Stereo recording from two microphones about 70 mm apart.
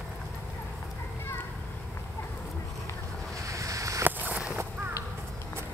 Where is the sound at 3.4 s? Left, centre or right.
Right.